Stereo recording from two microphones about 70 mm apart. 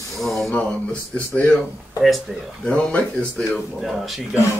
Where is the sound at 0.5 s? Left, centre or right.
Centre.